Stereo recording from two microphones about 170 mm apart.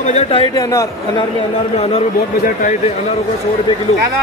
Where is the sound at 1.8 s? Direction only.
35° left (ahead or behind).